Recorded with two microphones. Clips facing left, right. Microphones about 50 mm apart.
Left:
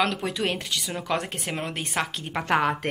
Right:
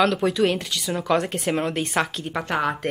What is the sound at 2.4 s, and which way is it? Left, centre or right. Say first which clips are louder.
Speech: left 2 dB; left.